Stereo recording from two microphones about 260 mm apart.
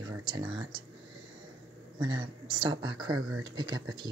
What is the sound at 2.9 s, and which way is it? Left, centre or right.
Speech, right.